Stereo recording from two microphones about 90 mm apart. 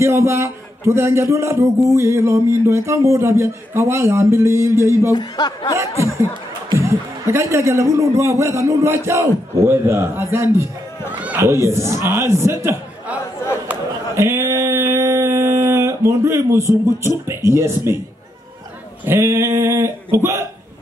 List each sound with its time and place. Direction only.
0.0 s a man's voice: 30° right (ahead or behind)
5.1 s speech: 50° left (ahead or behind)
5.8 s a man's voice: 35° right (ahead or behind)
11.1 s a man's voice: 15° right (ahead or behind)
11.4 s a man's voice: 30° right (ahead or behind)
14.1 s a sound: 35° right (ahead or behind)
17.3 s speech: 30° right (ahead or behind)
19.0 s a man's voice: 30° right (ahead or behind)